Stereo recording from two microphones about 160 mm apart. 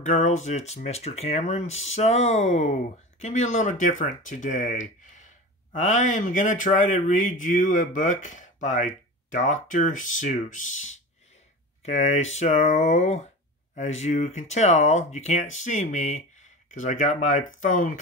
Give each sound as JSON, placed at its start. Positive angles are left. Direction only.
{"t": 0.0, "sound": "speech", "side_deg": 50}